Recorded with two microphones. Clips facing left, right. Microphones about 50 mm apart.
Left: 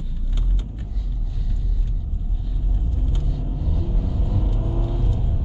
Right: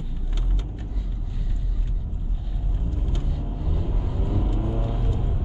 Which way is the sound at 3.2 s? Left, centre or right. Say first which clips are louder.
Left 2 dB; centre.